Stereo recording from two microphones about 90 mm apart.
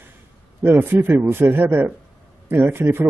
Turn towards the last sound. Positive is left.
turn(degrees=-25)  # may be behind; listen again after turning